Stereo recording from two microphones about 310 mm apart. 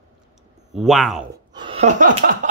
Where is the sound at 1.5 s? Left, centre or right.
Centre.